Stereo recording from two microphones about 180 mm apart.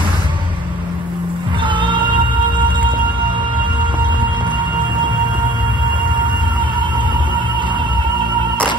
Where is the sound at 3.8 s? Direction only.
25° right (ahead or behind).